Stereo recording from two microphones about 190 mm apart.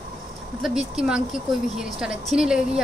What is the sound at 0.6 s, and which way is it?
Speech, 5° right (ahead or behind).